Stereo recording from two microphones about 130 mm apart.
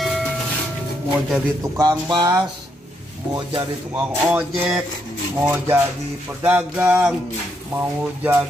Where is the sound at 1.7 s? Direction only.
35° right (ahead or behind).